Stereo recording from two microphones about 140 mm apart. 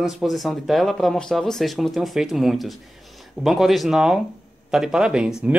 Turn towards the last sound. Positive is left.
turn(degrees=-5)  # may be behind; listen again after turning